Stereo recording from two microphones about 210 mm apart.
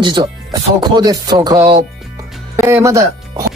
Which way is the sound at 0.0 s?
20° right (ahead or behind).